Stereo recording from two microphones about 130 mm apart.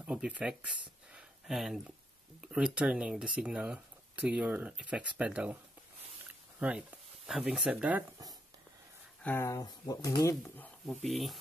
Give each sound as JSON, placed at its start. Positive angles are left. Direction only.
{"t": 0.0, "sound": "speech", "side_deg": -10}
{"t": 6.6, "sound": "speech", "side_deg": -10}
{"t": 9.2, "sound": "speech", "side_deg": 20}
{"t": 10.4, "sound": "speech", "side_deg": 15}
{"t": 11.1, "sound": "speech", "side_deg": 0}